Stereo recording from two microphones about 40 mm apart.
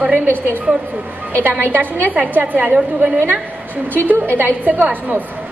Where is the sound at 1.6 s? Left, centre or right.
Right.